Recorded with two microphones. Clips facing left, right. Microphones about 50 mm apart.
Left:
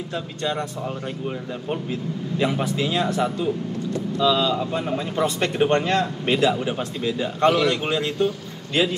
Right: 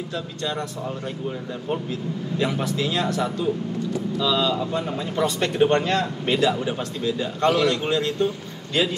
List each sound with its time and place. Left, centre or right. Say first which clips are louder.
0.1 s speech: left 3 dB; left